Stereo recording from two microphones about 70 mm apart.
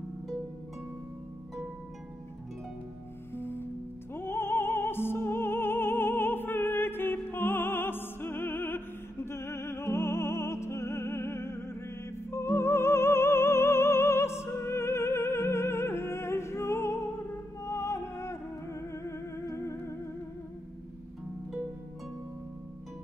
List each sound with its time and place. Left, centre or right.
3.3 s music: left